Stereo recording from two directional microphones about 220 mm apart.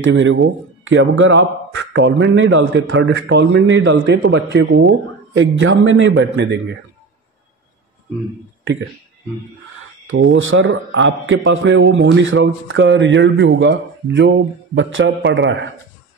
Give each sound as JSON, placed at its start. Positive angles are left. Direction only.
{"t": 0.0, "sound": "a man's voice", "side_deg": -60}
{"t": 10.0, "sound": "a man's voice", "side_deg": -60}